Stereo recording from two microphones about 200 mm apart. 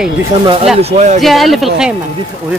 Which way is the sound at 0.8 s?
35° right (ahead or behind).